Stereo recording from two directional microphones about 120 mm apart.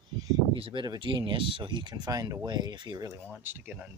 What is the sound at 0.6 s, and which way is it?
Speech, 50° right (ahead or behind).